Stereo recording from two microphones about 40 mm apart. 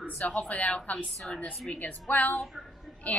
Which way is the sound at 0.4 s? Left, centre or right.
Left.